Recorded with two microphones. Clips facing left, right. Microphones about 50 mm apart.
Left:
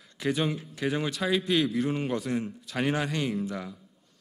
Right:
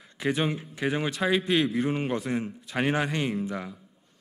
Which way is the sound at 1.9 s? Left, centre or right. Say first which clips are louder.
Right 1 dB; right.